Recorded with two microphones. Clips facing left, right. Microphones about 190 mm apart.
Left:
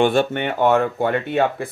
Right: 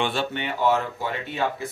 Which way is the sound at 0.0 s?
55° left (ahead or behind).